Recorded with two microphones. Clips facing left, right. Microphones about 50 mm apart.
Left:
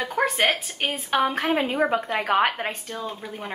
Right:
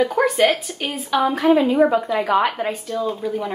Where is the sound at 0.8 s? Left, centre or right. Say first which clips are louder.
Right 3 dB; left.